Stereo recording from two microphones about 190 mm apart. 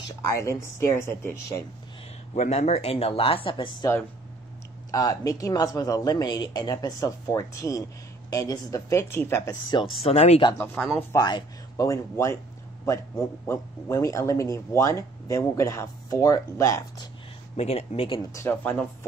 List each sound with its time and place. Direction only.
0.3 s a man's voice: 15° left (ahead or behind)
2.3 s speech: 35° left (ahead or behind)
4.9 s a man's voice: 20° left (ahead or behind)
10.0 s speech: 35° left (ahead or behind)
11.0 s a man's voice: 15° left (ahead or behind)
17.6 s speech: 30° left (ahead or behind)
18.3 s a man's voice: 10° left (ahead or behind)